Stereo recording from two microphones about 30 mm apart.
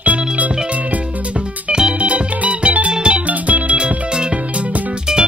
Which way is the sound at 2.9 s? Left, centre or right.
Right.